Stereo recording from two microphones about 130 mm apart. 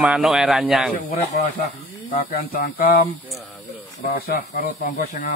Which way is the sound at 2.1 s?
90° left.